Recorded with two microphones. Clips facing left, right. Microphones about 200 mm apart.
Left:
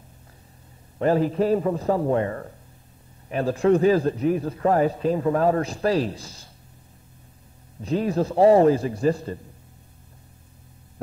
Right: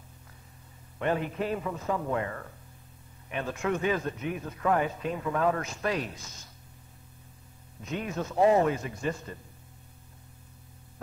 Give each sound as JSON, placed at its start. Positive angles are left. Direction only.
{"t": 0.9, "sound": "a man's voice", "side_deg": 35}
{"t": 7.8, "sound": "a man's voice", "side_deg": 35}